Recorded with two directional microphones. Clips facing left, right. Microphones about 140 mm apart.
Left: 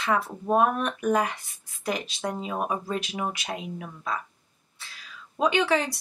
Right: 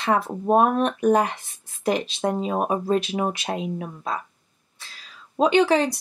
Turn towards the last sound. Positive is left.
turn(degrees=-25)  # may be behind; listen again after turning